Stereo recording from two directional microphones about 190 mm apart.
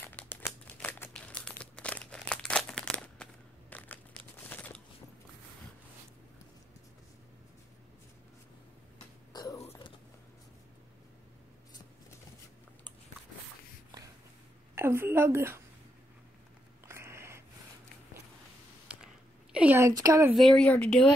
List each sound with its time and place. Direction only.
0.1 s typewriter: 10° left (ahead or behind)
1.4 s crumpling: 5° left (ahead or behind)
9.3 s a sound: 20° left (ahead or behind)
14.8 s a woman's voice: 10° right (ahead or behind)
16.8 s a sound: 15° right (ahead or behind)
19.5 s speech: 10° right (ahead or behind)
20.3 s speech: 5° left (ahead or behind)